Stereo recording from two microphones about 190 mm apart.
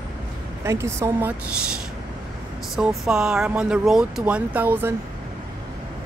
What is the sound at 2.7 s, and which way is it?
Speech, 5° right (ahead or behind).